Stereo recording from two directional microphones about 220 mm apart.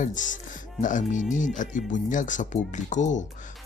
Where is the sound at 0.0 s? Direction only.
35° left (ahead or behind).